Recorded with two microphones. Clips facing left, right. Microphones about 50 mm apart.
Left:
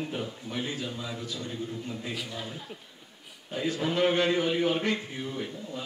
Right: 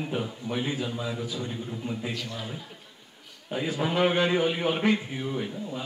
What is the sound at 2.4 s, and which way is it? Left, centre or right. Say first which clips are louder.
A man's voice: right 1 dB; centre.